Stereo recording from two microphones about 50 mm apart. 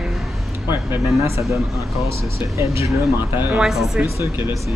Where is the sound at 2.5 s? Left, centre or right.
Right.